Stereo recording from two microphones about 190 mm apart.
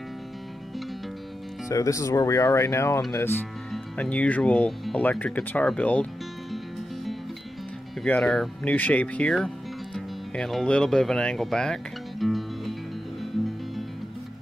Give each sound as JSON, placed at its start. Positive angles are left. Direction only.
{"t": 1.7, "sound": "speech", "side_deg": 15}
{"t": 8.0, "sound": "speech", "side_deg": 5}